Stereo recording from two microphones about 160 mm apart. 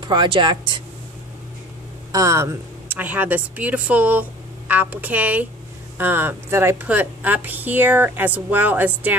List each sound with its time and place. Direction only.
0.0 s speech: 30° right (ahead or behind)
2.1 s a woman's voice: 20° right (ahead or behind)